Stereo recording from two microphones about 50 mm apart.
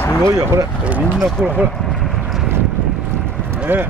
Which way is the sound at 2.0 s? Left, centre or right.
Centre.